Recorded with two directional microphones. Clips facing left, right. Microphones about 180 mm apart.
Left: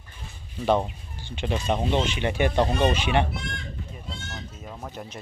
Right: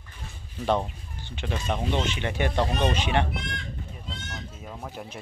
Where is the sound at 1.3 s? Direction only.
20° left (ahead or behind).